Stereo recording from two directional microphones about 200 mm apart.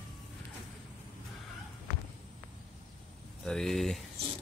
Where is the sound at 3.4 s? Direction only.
Centre (ahead or behind).